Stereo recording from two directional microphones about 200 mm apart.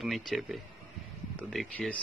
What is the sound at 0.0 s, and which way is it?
Speech, centre (ahead or behind).